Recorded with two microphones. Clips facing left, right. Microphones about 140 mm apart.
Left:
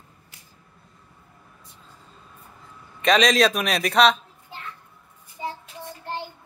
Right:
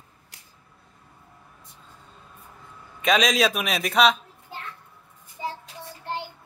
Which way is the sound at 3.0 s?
Centre (ahead or behind).